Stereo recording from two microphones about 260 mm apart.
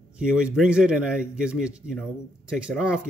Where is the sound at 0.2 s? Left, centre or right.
Centre.